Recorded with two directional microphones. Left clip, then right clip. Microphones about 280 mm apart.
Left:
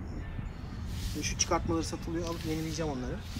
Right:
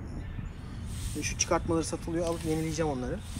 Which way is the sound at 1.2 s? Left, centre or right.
Centre.